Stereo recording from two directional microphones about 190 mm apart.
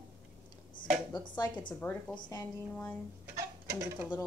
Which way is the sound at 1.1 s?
20° left (ahead or behind).